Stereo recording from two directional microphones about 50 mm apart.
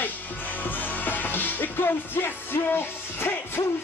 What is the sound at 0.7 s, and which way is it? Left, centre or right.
Music, left.